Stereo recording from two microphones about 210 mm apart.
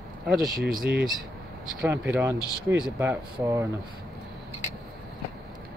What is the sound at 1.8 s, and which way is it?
Speech, 10° right (ahead or behind).